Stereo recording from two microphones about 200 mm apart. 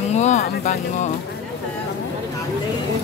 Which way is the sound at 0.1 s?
35° left (ahead or behind).